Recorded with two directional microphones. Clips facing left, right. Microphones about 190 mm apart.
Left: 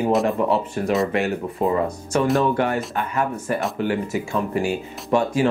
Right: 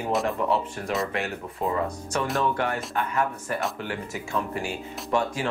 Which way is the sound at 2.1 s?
5° left (ahead or behind).